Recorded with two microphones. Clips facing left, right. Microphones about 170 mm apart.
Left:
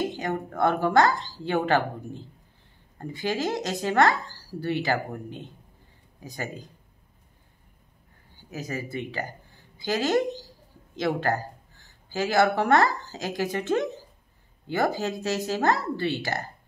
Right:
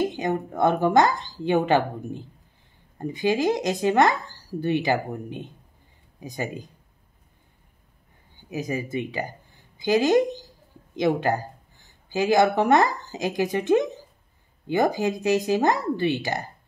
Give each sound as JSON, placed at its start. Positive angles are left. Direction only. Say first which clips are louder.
{"t": 0.0, "sound": "speech", "louder": "right 4 dB", "side_deg": -20}
{"t": 8.4, "sound": "speech", "louder": "right 5 dB", "side_deg": -15}